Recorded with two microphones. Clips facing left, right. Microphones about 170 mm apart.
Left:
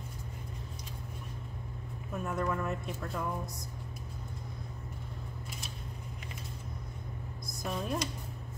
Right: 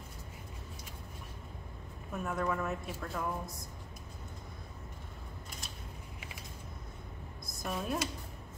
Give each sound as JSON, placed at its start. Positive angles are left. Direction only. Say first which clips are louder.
{"t": 2.2, "sound": "speech", "louder": "left 1 dB", "side_deg": 0}
{"t": 7.4, "sound": "speech", "louder": "left 1 dB", "side_deg": 0}